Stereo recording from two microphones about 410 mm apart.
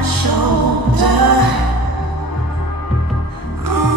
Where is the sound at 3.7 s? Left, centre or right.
Right.